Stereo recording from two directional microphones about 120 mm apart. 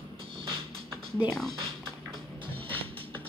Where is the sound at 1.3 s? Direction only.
Centre (ahead or behind).